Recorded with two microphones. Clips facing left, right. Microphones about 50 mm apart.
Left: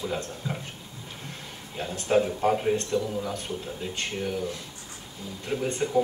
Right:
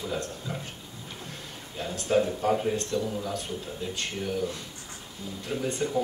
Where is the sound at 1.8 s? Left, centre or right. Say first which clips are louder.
Left 1 dB; left.